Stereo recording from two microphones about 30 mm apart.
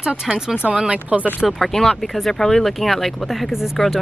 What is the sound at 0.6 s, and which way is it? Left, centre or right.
Speech, right.